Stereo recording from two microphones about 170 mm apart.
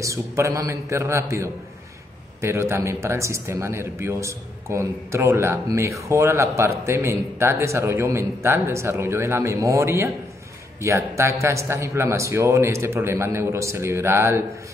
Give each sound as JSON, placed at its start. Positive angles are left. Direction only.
{"t": 0.0, "sound": "a man's voice", "side_deg": -20}